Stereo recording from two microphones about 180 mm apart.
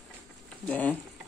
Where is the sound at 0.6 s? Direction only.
10° left (ahead or behind).